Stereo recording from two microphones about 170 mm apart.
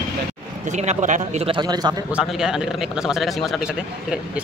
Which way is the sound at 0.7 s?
45° right (ahead or behind).